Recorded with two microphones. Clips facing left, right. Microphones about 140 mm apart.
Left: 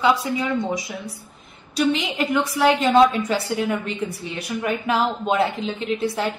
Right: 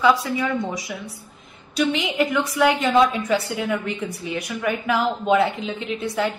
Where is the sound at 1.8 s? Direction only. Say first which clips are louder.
Even; 35° left (ahead or behind).